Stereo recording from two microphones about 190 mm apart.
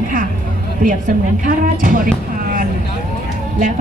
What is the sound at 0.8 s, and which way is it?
A woman's voice, 45° right (ahead or behind).